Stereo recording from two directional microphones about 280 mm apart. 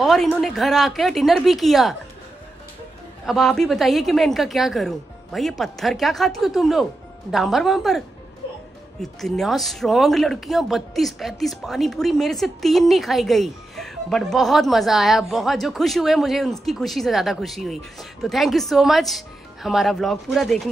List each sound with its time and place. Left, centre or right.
0.0 s speech: centre
3.3 s speech: centre
9.0 s speech: centre